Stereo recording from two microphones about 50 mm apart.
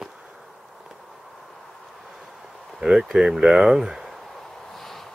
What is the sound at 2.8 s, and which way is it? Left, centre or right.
Speech, centre.